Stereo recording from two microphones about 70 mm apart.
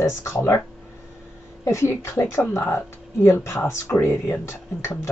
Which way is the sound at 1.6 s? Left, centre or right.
Left.